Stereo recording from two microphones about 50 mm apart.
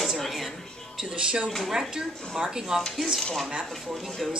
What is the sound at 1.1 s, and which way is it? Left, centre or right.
Speech, centre.